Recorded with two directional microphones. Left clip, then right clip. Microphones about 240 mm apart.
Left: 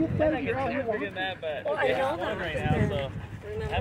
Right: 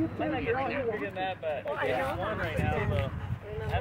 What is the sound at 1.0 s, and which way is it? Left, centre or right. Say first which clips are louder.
Speech: left 1 dB; left.